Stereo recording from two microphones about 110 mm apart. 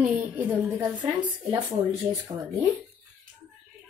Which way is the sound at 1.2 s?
40° right (ahead or behind).